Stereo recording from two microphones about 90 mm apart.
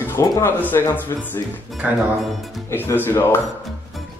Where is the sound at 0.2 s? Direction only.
30° left (ahead or behind).